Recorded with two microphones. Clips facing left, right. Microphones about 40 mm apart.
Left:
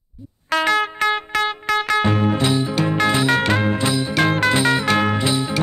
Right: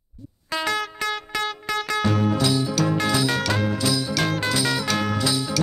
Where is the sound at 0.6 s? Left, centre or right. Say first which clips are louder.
Left 7 dB; left.